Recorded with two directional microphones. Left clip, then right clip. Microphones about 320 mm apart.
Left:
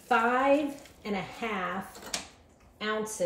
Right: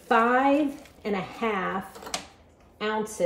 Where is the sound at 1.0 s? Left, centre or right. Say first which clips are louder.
Right 5 dB; right.